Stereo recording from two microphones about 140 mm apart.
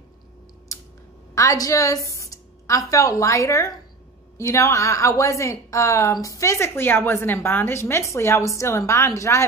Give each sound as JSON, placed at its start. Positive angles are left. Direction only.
{"t": 1.3, "sound": "a woman's voice", "side_deg": 20}